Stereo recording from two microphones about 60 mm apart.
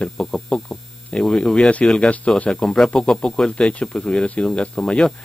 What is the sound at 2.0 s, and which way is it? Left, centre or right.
Speech, left.